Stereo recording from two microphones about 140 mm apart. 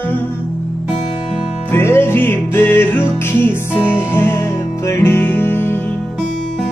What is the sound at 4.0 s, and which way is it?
Music, 15° left (ahead or behind).